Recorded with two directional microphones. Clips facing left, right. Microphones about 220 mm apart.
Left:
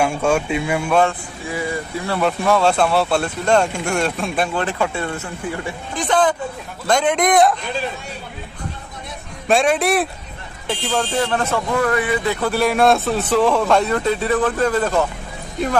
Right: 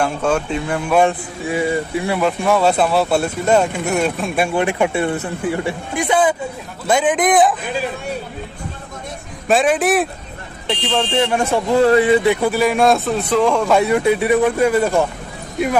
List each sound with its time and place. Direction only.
0.0 s speech: 10° left (ahead or behind)
0.8 s speech: 10° right (ahead or behind)
1.5 s speech: 20° right (ahead or behind)
2.1 s a man's voice: centre (ahead or behind)
9.5 s a man's voice: centre (ahead or behind)
11.2 s speech: 15° right (ahead or behind)
11.7 s speech: 25° right (ahead or behind)
12.4 s speech: 5° right (ahead or behind)